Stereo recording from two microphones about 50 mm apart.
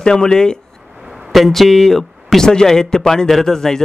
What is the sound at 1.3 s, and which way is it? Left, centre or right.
Speech, centre.